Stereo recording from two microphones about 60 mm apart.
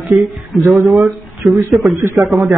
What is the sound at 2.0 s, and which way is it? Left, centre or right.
Speech, right.